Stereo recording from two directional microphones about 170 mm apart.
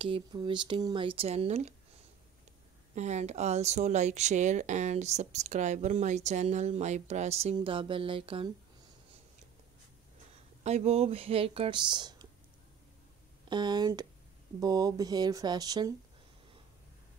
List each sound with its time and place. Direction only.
0.0 s speech: 25° right (ahead or behind)
2.9 s speech: 40° right (ahead or behind)
10.6 s speech: 40° right (ahead or behind)
13.5 s speech: 25° right (ahead or behind)